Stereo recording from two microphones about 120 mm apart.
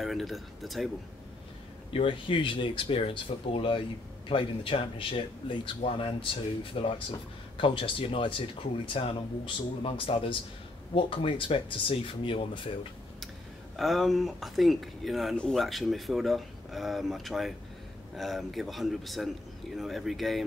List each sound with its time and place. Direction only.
0.0 s speech: centre (ahead or behind)
1.9 s speech: 45° left (ahead or behind)
13.7 s speech: centre (ahead or behind)